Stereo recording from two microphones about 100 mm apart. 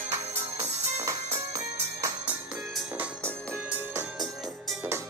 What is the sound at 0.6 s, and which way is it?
Music, 90° right.